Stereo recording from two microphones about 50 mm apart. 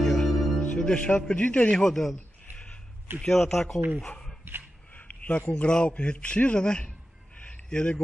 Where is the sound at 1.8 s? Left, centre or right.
Centre.